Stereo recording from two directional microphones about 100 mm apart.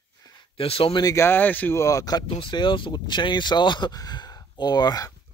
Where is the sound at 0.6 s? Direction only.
65° left (ahead or behind).